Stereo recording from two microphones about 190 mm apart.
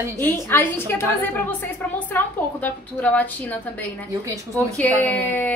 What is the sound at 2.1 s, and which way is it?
A woman's voice, 10° left (ahead or behind).